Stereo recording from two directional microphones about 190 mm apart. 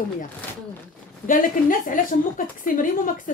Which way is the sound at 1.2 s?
45° left (ahead or behind).